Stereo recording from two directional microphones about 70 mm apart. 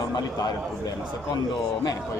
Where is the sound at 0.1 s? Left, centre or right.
Left.